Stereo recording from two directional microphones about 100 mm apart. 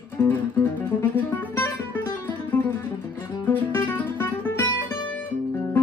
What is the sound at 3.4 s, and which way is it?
Music, 20° left (ahead or behind).